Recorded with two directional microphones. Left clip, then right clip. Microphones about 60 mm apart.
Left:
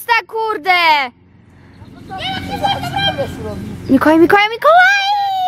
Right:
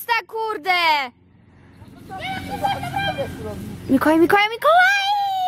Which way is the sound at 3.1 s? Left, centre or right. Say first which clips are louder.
Left 6 dB; centre.